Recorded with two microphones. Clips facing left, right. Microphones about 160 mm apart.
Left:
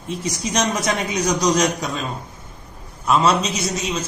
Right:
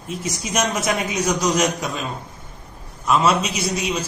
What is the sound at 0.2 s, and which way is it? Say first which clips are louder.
A man's voice: left 1 dB; 5° right (ahead or behind).